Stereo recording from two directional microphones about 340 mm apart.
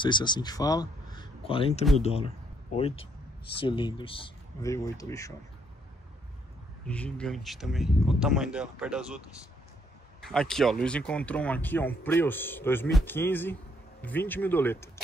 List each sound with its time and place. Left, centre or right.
0.0 s speech: centre
6.9 s speech: centre
10.2 s speech: centre